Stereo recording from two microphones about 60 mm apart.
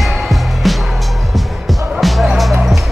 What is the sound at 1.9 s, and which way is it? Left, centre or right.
Music, centre.